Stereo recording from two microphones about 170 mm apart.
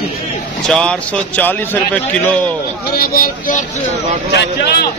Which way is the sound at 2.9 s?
60° left (ahead or behind).